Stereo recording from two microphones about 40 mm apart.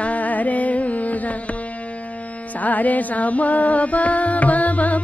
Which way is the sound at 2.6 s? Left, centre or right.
Left.